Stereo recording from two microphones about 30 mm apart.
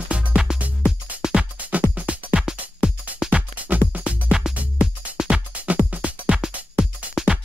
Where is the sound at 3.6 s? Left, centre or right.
Right.